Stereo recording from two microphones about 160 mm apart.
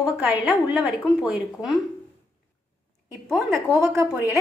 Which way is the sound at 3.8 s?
20° right (ahead or behind).